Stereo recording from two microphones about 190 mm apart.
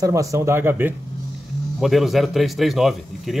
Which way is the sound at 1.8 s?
Centre (ahead or behind).